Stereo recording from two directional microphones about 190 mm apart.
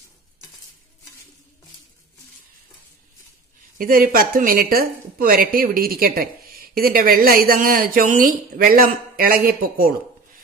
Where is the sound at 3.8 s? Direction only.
50° right (ahead or behind).